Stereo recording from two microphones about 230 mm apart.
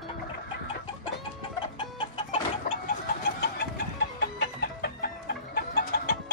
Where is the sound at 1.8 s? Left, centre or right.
Left.